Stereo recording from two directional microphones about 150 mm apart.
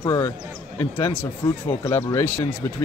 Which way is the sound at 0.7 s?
15° left (ahead or behind).